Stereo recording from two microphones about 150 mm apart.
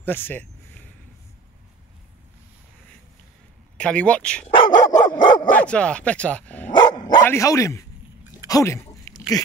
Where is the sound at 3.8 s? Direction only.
5° left (ahead or behind).